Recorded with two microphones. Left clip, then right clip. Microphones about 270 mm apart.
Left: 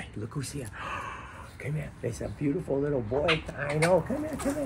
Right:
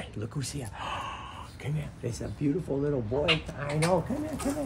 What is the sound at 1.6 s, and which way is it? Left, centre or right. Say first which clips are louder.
Speech: left 3 dB; centre.